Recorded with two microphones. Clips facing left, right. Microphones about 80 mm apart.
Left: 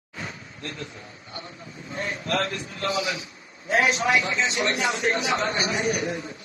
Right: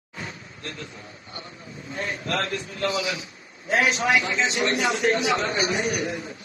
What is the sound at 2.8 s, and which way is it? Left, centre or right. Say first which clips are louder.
Speech: even; left.